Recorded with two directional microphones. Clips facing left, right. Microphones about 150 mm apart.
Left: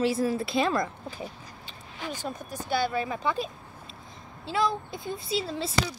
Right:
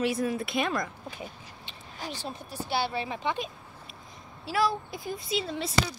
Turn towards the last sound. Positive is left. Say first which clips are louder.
# left 1 dB
turn(degrees=35)  # may be behind; listen again after turning